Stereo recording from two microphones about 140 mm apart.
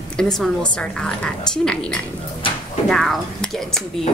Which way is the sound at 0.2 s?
5° left (ahead or behind).